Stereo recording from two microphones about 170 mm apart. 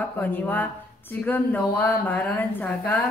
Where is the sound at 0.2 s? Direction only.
10° left (ahead or behind).